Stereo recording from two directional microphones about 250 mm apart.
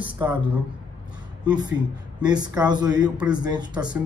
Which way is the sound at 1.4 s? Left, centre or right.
Centre.